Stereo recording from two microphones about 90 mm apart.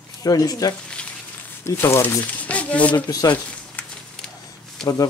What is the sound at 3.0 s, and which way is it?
Speech, 45° left (ahead or behind).